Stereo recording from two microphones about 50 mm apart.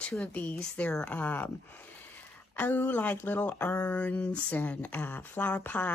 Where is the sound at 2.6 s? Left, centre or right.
Left.